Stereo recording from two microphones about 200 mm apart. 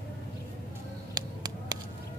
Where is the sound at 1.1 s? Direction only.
20° right (ahead or behind).